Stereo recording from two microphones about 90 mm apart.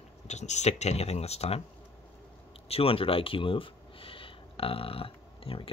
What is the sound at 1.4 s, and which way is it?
Speech, 90° left.